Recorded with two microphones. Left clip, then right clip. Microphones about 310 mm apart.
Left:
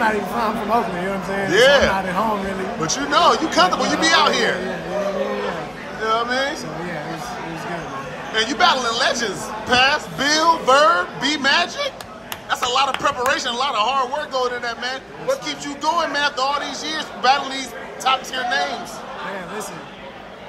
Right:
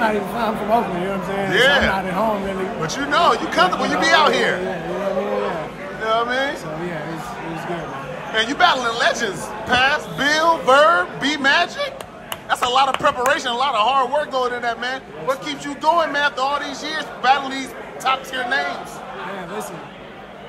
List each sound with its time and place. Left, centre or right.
0.0 s speech: centre
6.0 s speech: centre
8.4 s speech: centre